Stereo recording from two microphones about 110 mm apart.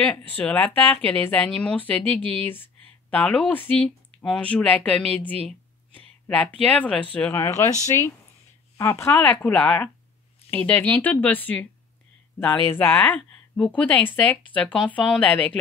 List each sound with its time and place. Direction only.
0.0 s speech: 15° left (ahead or behind)
7.4 s speech: 25° left (ahead or behind)